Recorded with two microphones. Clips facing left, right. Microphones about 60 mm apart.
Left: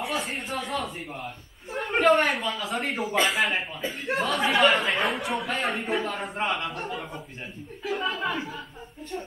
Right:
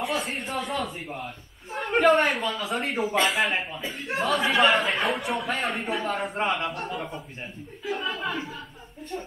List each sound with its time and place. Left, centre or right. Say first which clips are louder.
0.1 s a man's voice: right 1 dB; centre
1.2 s a sound: even; centre
2.2 s a man's voice: right 1 dB; centre
2.8 s a man's voice: right 2 dB; centre
3.1 s a man's voice: even; centre
6.4 s a man's voice: right 1 dB; centre
6.8 s a man's voice: right 1 dB; centre